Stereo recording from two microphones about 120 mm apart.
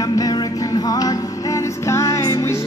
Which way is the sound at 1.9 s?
25° left (ahead or behind).